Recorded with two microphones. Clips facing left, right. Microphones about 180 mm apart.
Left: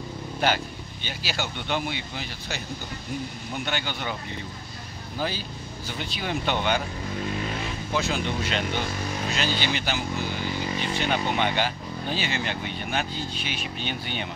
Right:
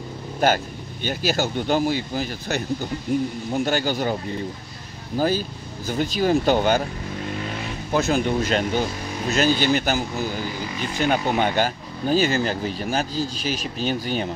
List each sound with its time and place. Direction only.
0.4 s speech: 45° right (ahead or behind)
7.9 s speech: 45° right (ahead or behind)